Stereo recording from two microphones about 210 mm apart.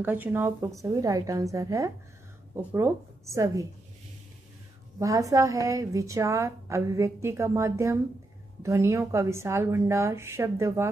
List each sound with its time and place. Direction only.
0.0 s a woman's voice: 10° right (ahead or behind)
4.9 s a woman's voice: 15° right (ahead or behind)